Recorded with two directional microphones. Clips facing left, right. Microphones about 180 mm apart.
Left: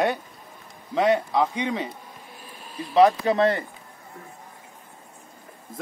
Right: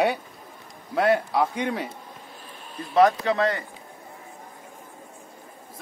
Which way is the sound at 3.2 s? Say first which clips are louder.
Left 3 dB; 25° left (ahead or behind).